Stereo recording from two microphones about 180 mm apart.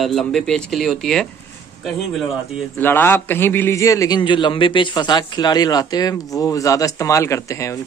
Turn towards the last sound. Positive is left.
turn(degrees=15)  # may be behind; listen again after turning